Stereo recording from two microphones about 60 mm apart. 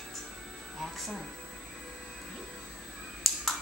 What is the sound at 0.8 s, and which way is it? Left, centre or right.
Speech, centre.